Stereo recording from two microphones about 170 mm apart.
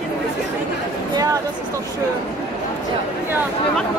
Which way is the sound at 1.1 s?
20° right (ahead or behind).